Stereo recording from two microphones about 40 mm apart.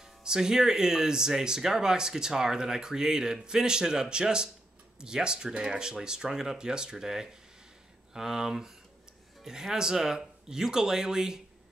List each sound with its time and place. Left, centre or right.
0.0 s speech: centre